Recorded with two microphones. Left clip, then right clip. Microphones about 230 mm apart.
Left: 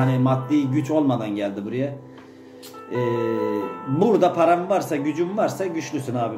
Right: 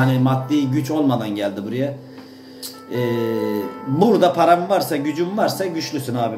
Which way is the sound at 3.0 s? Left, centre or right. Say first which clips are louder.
Right 2 dB; left.